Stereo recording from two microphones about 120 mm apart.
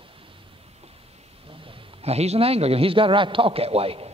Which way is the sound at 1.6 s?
60° right (ahead or behind).